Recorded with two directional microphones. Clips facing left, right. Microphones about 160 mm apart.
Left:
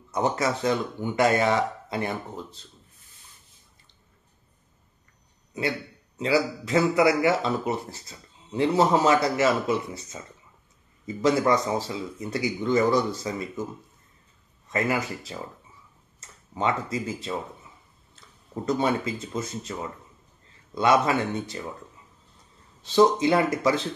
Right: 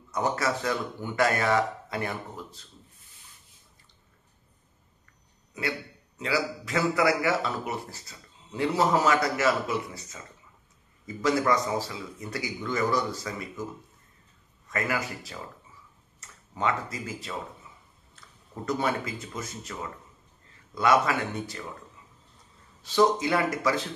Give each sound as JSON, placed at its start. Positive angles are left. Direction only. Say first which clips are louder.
{"t": 0.1, "sound": "a man's voice", "louder": "left 3 dB", "side_deg": 20}
{"t": 5.5, "sound": "a man's voice", "louder": "left 4 dB", "side_deg": 25}
{"t": 11.1, "sound": "a man's voice", "louder": "left 3 dB", "side_deg": 25}
{"t": 14.7, "sound": "a man's voice", "louder": "left 4 dB", "side_deg": 25}
{"t": 18.7, "sound": "a man's voice", "louder": "left 4 dB", "side_deg": 25}
{"t": 20.7, "sound": "a man's voice", "louder": "left 2 dB", "side_deg": 25}
{"t": 22.8, "sound": "a man's voice", "louder": "left 4 dB", "side_deg": 25}